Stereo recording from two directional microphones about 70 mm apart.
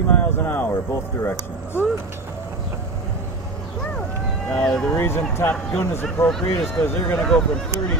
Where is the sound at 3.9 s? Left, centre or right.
Left.